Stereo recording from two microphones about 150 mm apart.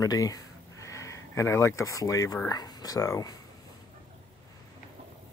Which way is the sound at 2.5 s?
25° left (ahead or behind).